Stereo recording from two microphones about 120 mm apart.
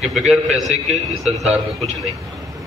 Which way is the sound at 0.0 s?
5° right (ahead or behind).